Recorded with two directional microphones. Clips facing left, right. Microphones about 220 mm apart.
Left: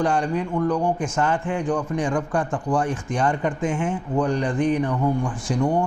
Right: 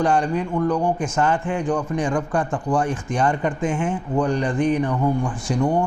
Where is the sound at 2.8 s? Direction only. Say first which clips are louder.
Right 1 dB; 10° right (ahead or behind).